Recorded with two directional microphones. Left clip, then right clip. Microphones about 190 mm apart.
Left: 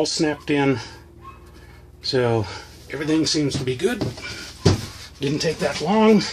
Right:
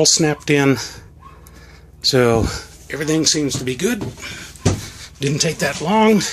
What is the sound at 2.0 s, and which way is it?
Speech, 20° right (ahead or behind).